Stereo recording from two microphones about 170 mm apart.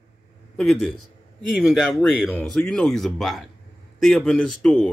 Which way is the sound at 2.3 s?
5° left (ahead or behind).